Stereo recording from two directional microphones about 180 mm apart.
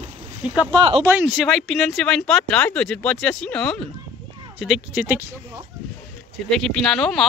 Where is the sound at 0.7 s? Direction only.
30° right (ahead or behind).